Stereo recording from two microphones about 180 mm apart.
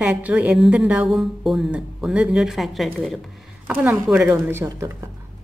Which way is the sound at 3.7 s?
10° right (ahead or behind).